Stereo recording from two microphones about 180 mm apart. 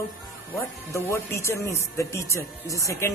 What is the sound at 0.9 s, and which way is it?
Speech, 15° left (ahead or behind).